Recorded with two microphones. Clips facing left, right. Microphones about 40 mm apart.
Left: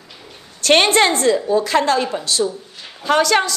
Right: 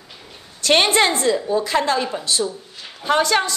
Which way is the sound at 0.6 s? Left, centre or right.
Left.